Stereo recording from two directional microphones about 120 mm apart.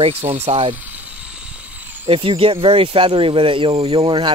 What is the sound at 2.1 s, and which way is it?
Speech, 50° right (ahead or behind).